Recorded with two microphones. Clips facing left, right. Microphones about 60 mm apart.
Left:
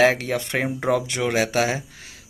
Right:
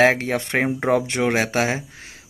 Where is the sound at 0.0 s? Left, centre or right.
Right.